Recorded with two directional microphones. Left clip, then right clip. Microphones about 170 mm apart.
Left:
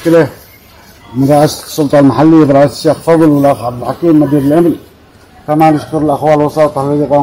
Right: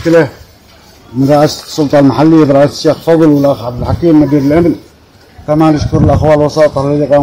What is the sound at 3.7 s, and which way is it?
Speech, 55° right (ahead or behind).